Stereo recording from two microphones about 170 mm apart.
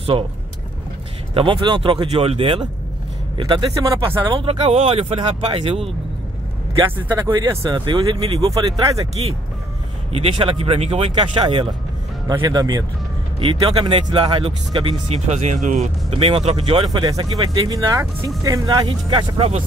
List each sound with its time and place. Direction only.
1.3 s speech: 30° right (ahead or behind)
4.4 s speech: 35° right (ahead or behind)
7.2 s speech: 20° right (ahead or behind); by 8.5 s 35° right (ahead or behind)
8.5 s speech: 20° right (ahead or behind)
10.1 s speech: 35° right (ahead or behind)
16.1 s speech: 35° right (ahead or behind)
16.9 s speech: 25° right (ahead or behind)